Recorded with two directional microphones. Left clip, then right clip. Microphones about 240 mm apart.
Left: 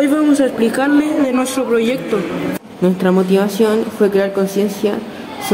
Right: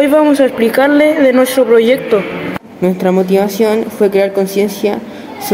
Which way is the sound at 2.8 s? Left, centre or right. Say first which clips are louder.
Right 2 dB; centre.